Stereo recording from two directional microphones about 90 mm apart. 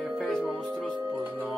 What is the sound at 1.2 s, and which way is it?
Music, 20° right (ahead or behind).